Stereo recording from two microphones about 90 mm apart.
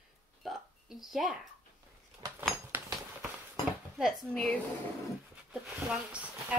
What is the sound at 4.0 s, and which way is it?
Speech, centre (ahead or behind).